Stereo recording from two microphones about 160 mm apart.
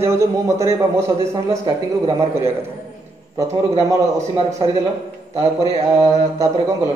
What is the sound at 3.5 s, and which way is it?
Speech, 20° right (ahead or behind).